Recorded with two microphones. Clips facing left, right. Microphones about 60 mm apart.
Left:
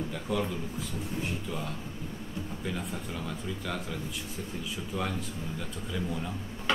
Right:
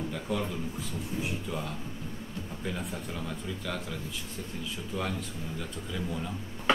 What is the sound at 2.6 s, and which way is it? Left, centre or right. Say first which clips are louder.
Speech: right 1 dB; centre.